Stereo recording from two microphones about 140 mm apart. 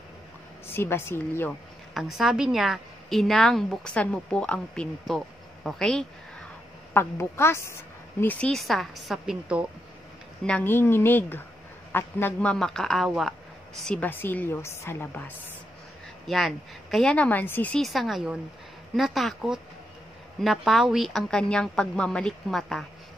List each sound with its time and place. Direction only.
0.7 s a woman's voice: 15° left (ahead or behind)
2.0 s a woman's voice: 5° right (ahead or behind)
6.9 s a woman's voice: 15° left (ahead or behind); by 9.7 s 5° right (ahead or behind)
10.4 s a woman's voice: 10° left (ahead or behind)
16.3 s a woman's voice: centre (ahead or behind)